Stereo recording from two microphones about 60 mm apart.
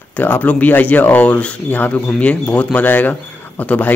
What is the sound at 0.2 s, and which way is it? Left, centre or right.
A man's voice, left.